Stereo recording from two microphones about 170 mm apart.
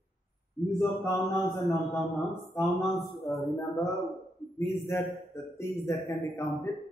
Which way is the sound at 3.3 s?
20° left (ahead or behind).